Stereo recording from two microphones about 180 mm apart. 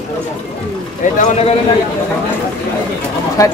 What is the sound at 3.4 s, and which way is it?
Speech, 20° left (ahead or behind).